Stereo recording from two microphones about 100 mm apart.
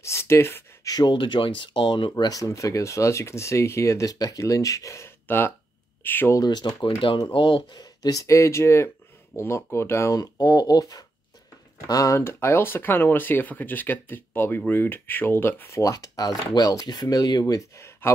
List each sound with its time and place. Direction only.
0.0 s speech: 25° left (ahead or behind)
0.8 s speech: 40° left (ahead or behind)
1.1 s speech: 55° left (ahead or behind)
2.2 s speech: 35° left (ahead or behind); by 6.3 s 20° left (ahead or behind)
6.3 s speech: 40° left (ahead or behind)
7.3 s speech: 55° left (ahead or behind); by 18.1 s 25° left (ahead or behind)